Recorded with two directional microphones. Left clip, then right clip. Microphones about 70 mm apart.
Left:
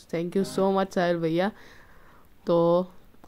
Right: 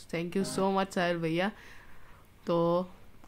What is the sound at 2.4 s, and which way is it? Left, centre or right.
Speech, left.